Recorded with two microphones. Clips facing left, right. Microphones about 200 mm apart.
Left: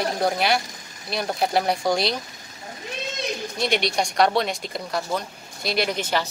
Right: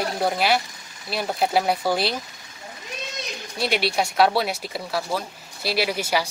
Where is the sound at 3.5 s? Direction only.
5° right (ahead or behind).